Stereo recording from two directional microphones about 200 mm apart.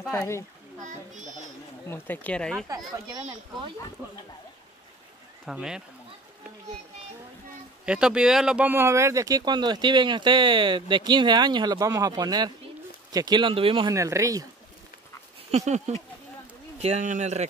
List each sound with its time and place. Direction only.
0.1 s speech: 15° left (ahead or behind)
1.9 s speech: 10° left (ahead or behind)
2.7 s speech: 20° right (ahead or behind)
5.4 s speech: 5° right (ahead or behind)
7.8 s speech: 5° right (ahead or behind)
15.5 s speech: 35° right (ahead or behind)